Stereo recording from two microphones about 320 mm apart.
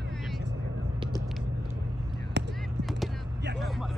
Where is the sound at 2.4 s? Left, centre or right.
Right.